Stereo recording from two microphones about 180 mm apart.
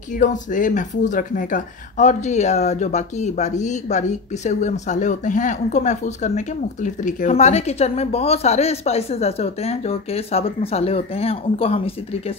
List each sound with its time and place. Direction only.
0.2 s speech: 45° left (ahead or behind)